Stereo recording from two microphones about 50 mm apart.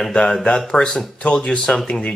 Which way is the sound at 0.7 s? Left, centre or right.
Centre.